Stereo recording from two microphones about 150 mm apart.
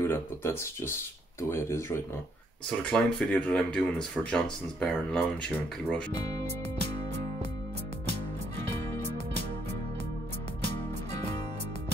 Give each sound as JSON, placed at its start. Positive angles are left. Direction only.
{"t": 0.0, "sound": "speech", "side_deg": 15}
{"t": 2.7, "sound": "speech", "side_deg": 5}